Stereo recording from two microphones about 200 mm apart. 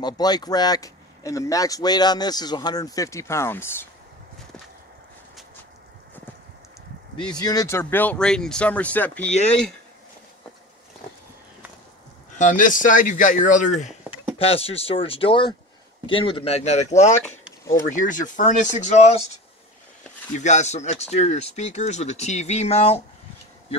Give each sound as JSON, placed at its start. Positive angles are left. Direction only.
{"t": 0.0, "sound": "speech", "side_deg": 20}
{"t": 7.2, "sound": "speech", "side_deg": 20}
{"t": 12.4, "sound": "speech", "side_deg": 40}
{"t": 20.3, "sound": "speech", "side_deg": 35}